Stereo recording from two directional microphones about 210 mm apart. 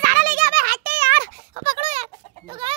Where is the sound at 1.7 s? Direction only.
30° right (ahead or behind).